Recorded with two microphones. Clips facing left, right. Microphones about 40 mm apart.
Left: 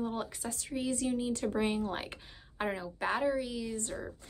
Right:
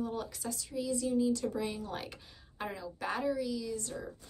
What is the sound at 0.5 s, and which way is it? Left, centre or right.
A woman's voice, left.